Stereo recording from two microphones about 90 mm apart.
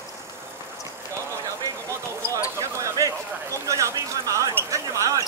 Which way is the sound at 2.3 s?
35° left (ahead or behind).